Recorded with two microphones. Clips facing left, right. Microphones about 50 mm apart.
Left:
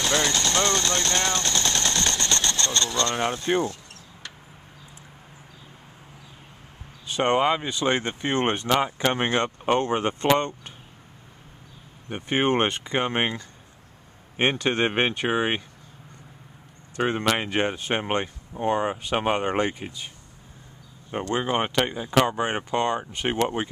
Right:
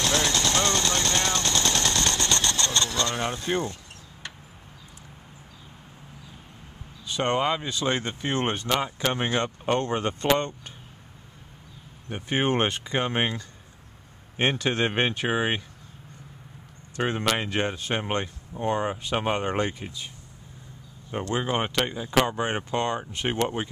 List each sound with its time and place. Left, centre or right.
0.0 s a sound: centre
3.3 s speech: centre
7.1 s speech: centre
12.1 s speech: centre
16.9 s speech: centre
21.1 s speech: centre
22.1 s speech: centre